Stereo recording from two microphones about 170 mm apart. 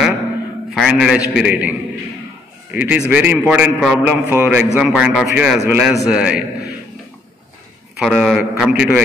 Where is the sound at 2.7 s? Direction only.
10° right (ahead or behind).